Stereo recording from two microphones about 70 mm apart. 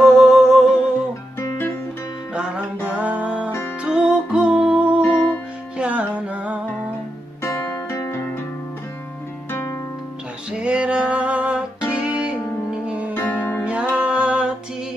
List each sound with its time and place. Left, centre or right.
0.0 s humming: centre
2.3 s music: centre
5.0 s music: left
5.8 s music: centre
7.4 s guitar: left
9.5 s music: left
10.6 s music: centre
13.1 s music: left
13.7 s music: centre